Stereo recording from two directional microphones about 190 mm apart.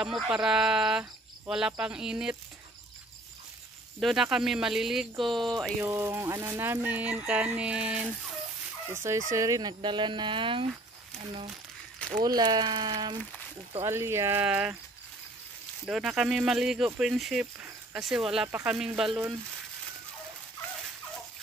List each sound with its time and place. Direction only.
0.0 s speech: 5° right (ahead or behind)
4.0 s speech: centre (ahead or behind)
5.8 s speech: 15° right (ahead or behind)
12.2 s speech: 20° right (ahead or behind)
15.8 s speech: centre (ahead or behind)